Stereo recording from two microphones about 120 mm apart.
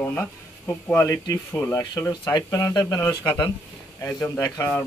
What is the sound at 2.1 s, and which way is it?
Speech, 30° left (ahead or behind).